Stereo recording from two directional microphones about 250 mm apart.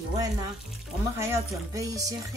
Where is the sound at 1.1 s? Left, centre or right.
Centre.